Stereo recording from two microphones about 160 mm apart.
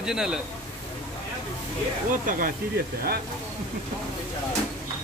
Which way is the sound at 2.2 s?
55° right (ahead or behind).